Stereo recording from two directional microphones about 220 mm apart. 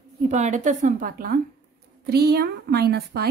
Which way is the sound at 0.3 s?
35° right (ahead or behind).